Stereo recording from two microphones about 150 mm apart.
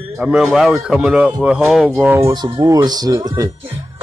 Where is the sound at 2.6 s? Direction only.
25° right (ahead or behind).